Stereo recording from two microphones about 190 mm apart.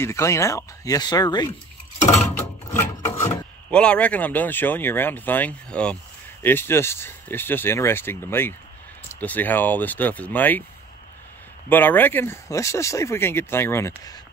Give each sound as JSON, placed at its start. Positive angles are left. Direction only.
{"t": 0.0, "sound": "speech", "side_deg": 15}
{"t": 2.3, "sound": "a sound", "side_deg": 10}
{"t": 3.7, "sound": "speech", "side_deg": 5}
{"t": 11.7, "sound": "speech", "side_deg": 10}